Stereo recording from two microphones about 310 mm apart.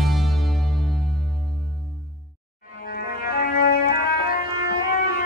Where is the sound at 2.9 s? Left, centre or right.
Left.